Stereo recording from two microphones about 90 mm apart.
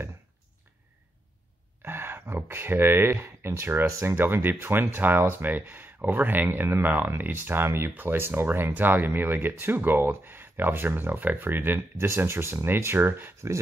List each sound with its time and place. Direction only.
1.8 s speech: 25° right (ahead or behind)